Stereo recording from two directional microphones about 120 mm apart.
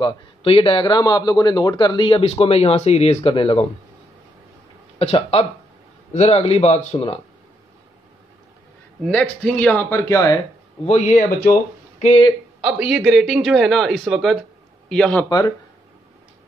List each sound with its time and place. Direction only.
0.0 s a man's voice: 50° left (ahead or behind)
3.3 s a man's voice: 50° left (ahead or behind)
4.9 s speech: 55° left (ahead or behind)
9.0 s speech: 10° left (ahead or behind); by 10.4 s 30° left (ahead or behind)
10.9 s speech: 85° left
12.6 s a man's voice: 5° right (ahead or behind)
15.2 s speech: 30° left (ahead or behind)